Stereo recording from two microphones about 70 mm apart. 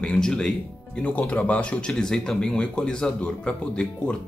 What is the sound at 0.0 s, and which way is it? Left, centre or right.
A man's voice, centre.